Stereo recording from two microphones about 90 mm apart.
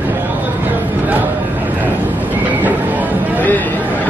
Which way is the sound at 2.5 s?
20° right (ahead or behind).